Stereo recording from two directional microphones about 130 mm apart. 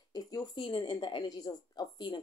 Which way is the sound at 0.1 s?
30° left (ahead or behind).